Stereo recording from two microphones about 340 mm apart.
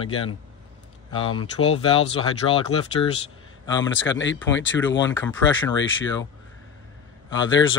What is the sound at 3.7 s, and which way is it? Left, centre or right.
Speech, left.